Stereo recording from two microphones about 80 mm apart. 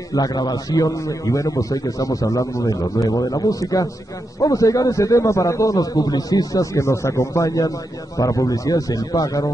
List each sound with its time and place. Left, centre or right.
0.1 s a man's voice: left